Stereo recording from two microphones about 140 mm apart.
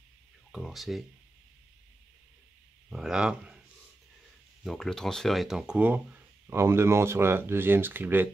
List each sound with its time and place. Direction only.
0.5 s speech: centre (ahead or behind)
2.9 s speech: 5° right (ahead or behind)
4.6 s speech: 5° left (ahead or behind)
6.4 s speech: 20° right (ahead or behind)